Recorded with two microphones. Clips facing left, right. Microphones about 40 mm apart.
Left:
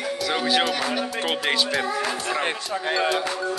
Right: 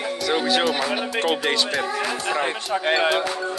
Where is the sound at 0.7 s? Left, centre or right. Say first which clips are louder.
Right 2 dB; centre.